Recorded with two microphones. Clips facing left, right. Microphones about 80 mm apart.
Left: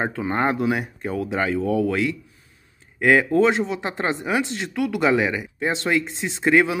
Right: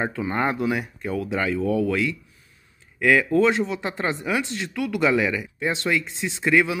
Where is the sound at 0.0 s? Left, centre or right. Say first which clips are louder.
Left 2 dB; left.